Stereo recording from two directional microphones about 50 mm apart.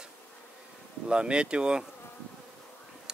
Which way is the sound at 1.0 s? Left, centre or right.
Centre.